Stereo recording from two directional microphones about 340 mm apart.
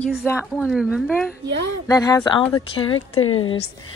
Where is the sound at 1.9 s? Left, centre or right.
Centre.